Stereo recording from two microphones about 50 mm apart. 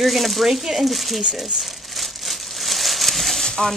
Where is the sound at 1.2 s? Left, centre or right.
Centre.